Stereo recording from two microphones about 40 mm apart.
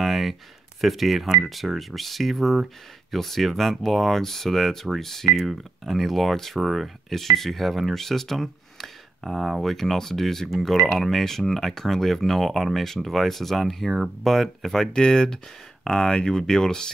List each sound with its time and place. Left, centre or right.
0.0 s speech: centre
5.3 s speech: centre
14.9 s speech: centre